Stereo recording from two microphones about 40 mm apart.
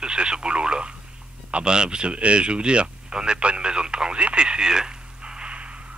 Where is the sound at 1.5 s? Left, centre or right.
Right.